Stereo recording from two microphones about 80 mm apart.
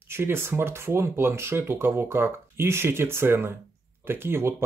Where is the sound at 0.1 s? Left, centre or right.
Right.